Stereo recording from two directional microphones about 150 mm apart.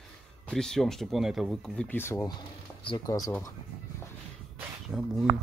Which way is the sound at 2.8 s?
35° left (ahead or behind).